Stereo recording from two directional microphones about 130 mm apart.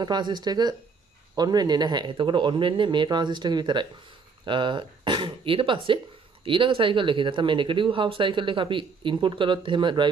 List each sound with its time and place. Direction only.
0.0 s speech: 35° right (ahead or behind)